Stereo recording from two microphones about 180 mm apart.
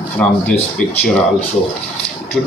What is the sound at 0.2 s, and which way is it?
Speech, 5° left (ahead or behind).